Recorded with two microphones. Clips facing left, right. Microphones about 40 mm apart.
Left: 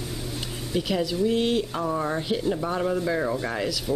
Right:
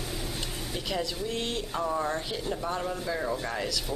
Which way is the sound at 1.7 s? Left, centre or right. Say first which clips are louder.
Left 3 dB; centre.